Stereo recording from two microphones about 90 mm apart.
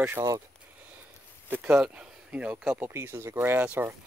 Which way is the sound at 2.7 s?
30° right (ahead or behind).